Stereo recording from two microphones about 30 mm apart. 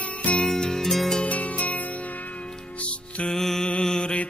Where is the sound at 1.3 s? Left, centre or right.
Left.